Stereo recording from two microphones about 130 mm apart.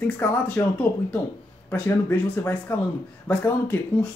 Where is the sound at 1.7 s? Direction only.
10° left (ahead or behind).